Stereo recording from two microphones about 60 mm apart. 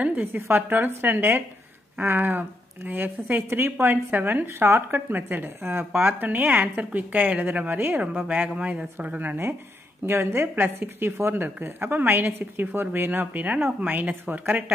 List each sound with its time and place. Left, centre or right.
0.0 s a woman's voice: right